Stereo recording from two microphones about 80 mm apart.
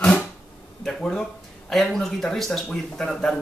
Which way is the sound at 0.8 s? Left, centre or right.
Centre.